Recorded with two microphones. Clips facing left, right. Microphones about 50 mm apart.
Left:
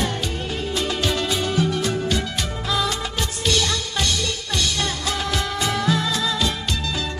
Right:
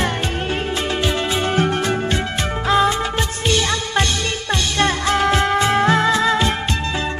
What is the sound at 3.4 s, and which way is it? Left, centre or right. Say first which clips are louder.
Music: right 2 dB; right.